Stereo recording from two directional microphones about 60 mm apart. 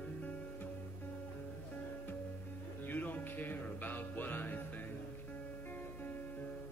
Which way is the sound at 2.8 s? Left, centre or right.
Left.